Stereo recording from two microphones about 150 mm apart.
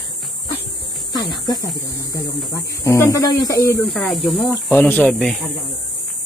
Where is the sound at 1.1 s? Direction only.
25° left (ahead or behind).